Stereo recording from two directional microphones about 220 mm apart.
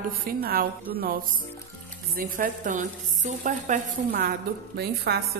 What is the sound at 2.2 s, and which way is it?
A woman's voice, 35° right (ahead or behind).